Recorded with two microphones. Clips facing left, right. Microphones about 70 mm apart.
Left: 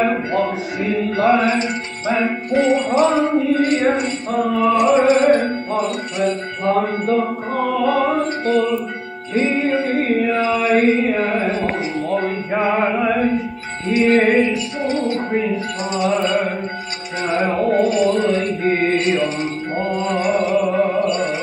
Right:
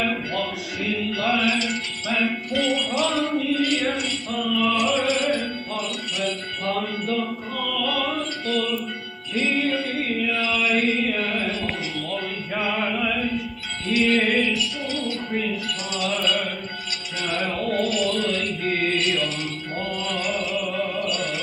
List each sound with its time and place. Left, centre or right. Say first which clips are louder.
0.0 s music: left 7 dB; left
15.3 s music: left 6 dB; left